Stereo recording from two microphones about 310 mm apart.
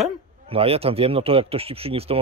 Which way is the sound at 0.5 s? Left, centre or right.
Centre.